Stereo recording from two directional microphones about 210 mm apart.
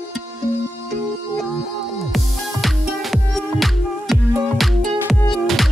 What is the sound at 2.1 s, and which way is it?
Music, centre (ahead or behind).